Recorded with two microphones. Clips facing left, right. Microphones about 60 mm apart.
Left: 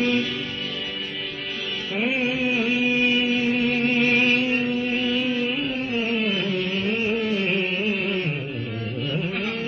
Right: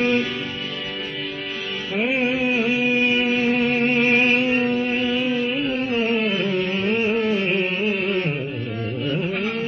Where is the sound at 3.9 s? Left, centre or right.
Right.